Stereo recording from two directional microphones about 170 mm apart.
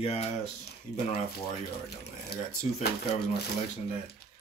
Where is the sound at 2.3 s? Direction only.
70° left (ahead or behind).